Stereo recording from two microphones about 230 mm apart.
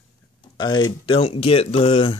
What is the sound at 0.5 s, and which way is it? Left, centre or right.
Speech, centre.